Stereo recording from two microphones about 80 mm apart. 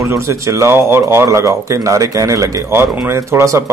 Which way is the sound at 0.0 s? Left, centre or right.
Right.